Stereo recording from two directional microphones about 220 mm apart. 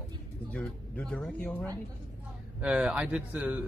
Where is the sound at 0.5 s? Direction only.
5° left (ahead or behind).